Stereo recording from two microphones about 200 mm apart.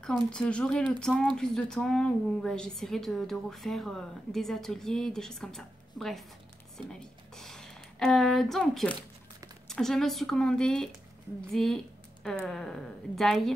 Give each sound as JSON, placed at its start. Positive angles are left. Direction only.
{"t": 0.0, "sound": "a woman's voice", "side_deg": 5}